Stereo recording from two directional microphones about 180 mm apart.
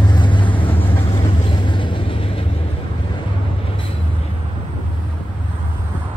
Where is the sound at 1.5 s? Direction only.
25° left (ahead or behind).